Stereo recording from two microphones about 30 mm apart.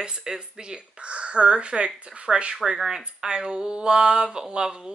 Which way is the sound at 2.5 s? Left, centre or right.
Right.